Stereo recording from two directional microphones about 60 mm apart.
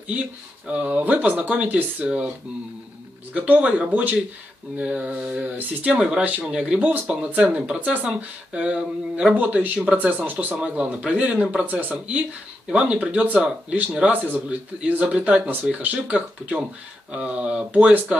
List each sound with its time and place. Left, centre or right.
0.7 s speech: right
3.3 s speech: right